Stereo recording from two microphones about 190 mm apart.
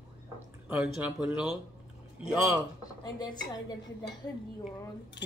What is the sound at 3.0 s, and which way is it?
Speech, 20° left (ahead or behind).